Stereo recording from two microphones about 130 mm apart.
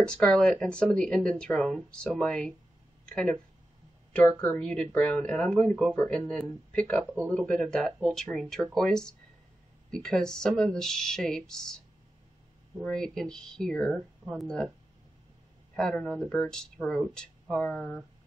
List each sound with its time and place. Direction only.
0.0 s speech: 5° left (ahead or behind)
4.4 s speech: 10° left (ahead or behind)
7.1 s speech: 15° right (ahead or behind)
7.3 s speech: 5° left (ahead or behind)
15.7 s speech: 5° left (ahead or behind)